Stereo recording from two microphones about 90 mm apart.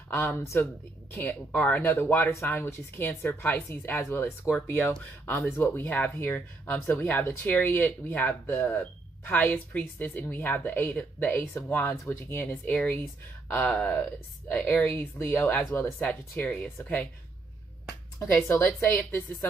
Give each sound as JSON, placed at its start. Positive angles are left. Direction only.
{"t": 0.1, "sound": "speech", "side_deg": 25}
{"t": 12.6, "sound": "speech", "side_deg": 10}
{"t": 18.6, "sound": "speech", "side_deg": 25}